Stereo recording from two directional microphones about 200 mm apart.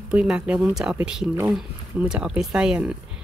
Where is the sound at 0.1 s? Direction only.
5° right (ahead or behind).